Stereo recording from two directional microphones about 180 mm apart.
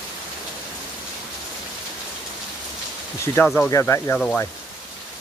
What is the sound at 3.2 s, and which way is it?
Speech, 15° left (ahead or behind).